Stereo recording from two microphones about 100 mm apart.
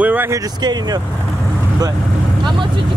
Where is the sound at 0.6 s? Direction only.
40° right (ahead or behind).